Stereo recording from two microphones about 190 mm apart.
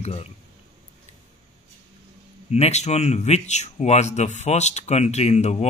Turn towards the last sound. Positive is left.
turn(degrees=35)  # may be behind; listen again after turning